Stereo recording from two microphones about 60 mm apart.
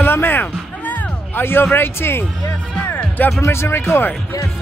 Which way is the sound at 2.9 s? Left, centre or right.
Left.